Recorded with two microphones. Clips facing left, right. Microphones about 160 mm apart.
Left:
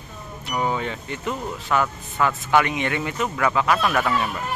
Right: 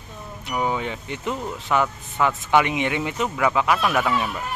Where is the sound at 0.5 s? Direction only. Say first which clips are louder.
Even; 10° right (ahead or behind).